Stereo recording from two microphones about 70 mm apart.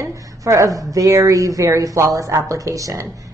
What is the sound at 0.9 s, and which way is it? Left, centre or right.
Speech, right.